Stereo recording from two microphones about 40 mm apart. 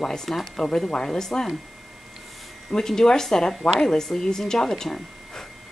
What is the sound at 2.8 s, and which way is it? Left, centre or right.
A woman's voice, centre.